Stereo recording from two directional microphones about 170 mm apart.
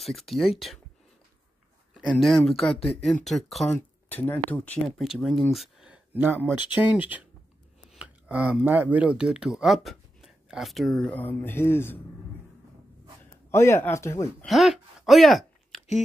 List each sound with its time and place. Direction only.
0.0 s speech: centre (ahead or behind)
2.0 s speech: centre (ahead or behind)
4.8 s speech: centre (ahead or behind)
5.5 s a sound: centre (ahead or behind)
6.7 s speech: 10° right (ahead or behind); by 12.0 s 15° left (ahead or behind)
13.5 s speech: 15° left (ahead or behind)
14.4 s a sound: centre (ahead or behind)